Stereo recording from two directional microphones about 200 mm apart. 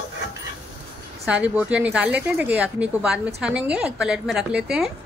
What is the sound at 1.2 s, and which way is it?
A woman's voice, 5° right (ahead or behind).